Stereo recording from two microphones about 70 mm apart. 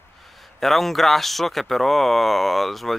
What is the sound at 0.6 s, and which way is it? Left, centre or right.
Speech, centre.